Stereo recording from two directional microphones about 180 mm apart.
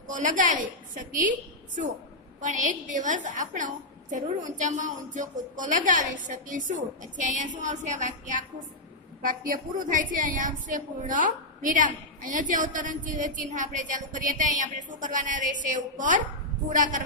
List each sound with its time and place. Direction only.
0.0 s a woman's voice: 45° right (ahead or behind)
2.4 s a woman's voice: 45° right (ahead or behind)